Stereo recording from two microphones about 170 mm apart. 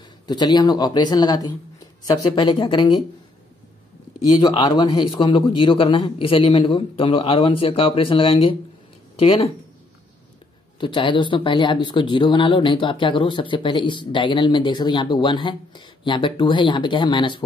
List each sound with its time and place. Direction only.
0.3 s speech: 25° left (ahead or behind)
4.4 s a man's voice: 25° left (ahead or behind)
10.8 s speech: 30° left (ahead or behind)